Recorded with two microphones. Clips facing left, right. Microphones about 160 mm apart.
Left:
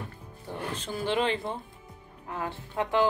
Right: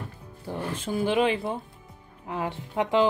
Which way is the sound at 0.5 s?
10° right (ahead or behind).